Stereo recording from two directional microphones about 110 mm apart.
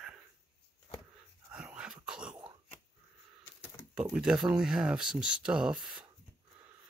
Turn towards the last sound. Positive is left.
turn(degrees=-10)  # may be behind; listen again after turning